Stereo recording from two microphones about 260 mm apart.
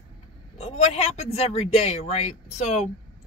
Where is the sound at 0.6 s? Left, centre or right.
Left.